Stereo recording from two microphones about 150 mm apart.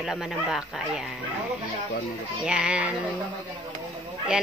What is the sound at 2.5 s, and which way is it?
Speech, 5° right (ahead or behind).